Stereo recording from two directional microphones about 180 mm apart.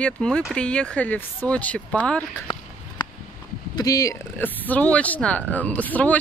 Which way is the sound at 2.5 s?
25° left (ahead or behind).